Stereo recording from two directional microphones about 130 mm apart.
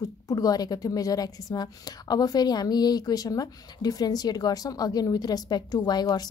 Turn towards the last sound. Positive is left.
turn(degrees=30)  # may be behind; listen again after turning